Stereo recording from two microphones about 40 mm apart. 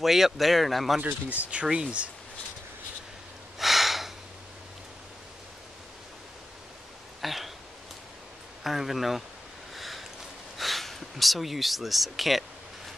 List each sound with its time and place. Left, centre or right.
0.0 s speech: centre
1.3 s speech: right
3.5 s gasp: centre
7.2 s a sound: centre
8.6 s speech: centre
9.8 s a sound: centre